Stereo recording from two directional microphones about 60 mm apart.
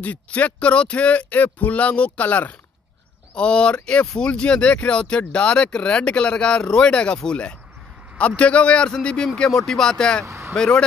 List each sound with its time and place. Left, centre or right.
0.0 s speech: left
8.2 s speech: left
10.2 s speech: right
10.5 s speech: centre